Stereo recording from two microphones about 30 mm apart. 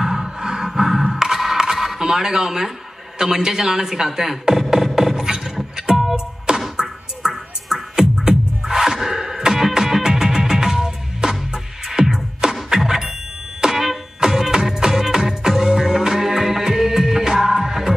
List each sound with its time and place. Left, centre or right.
0.0 s music: centre
0.7 s sonar: centre
1.1 s a sound: centre
2.0 s a man's voice: centre
4.9 s a sound: centre
5.9 s music: centre
6.5 s beatboxing: right
7.2 s music: centre
7.7 s music: centre
8.3 s music: centre